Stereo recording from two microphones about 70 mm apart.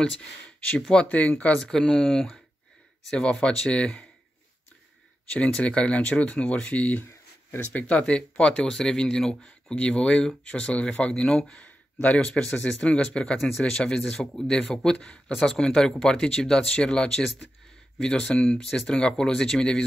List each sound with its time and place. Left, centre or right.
0.0 s speech: centre
1.6 s speech: centre
5.3 s speech: centre
7.1 s a sound: left
7.8 s speech: centre